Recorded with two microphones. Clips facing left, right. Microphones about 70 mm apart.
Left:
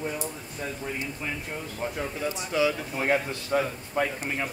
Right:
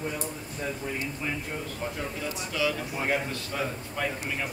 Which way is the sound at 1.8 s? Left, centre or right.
Left.